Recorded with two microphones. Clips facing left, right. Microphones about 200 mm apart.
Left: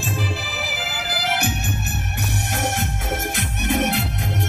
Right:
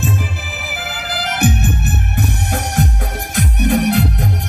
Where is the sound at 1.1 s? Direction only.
60° right (ahead or behind).